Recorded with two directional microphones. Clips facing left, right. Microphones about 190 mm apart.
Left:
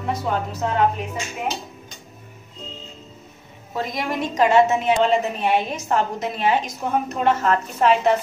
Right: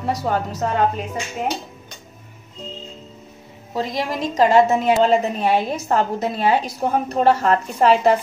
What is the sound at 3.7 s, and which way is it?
A woman's voice, 30° right (ahead or behind).